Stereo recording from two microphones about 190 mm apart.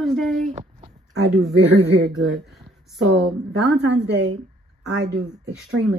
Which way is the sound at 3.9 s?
65° right (ahead or behind).